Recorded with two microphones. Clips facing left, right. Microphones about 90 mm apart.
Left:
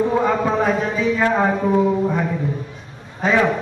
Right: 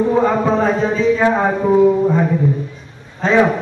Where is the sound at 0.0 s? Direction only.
5° right (ahead or behind).